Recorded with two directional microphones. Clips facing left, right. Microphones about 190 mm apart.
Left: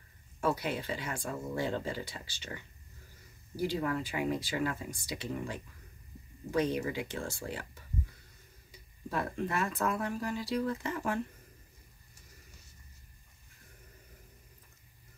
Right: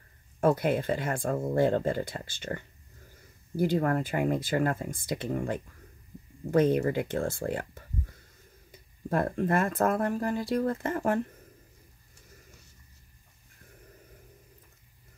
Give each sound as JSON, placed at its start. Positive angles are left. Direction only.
{"t": 0.4, "sound": "speech", "side_deg": -50}
{"t": 8.7, "sound": "speech", "side_deg": -50}